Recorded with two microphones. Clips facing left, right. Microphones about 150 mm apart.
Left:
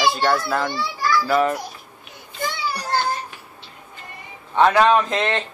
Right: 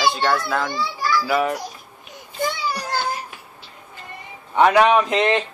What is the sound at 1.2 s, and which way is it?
Speech, 10° right (ahead or behind).